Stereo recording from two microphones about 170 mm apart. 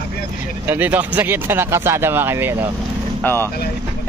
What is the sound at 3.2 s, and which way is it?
Speech, 15° left (ahead or behind).